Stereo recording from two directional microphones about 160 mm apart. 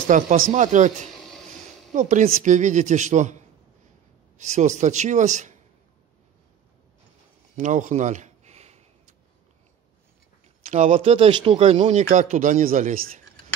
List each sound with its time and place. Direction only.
0.0 s speech: 55° right (ahead or behind)
2.0 s speech: 55° right (ahead or behind)
7.5 s a sound: 55° right (ahead or behind)
10.7 s speech: 50° right (ahead or behind)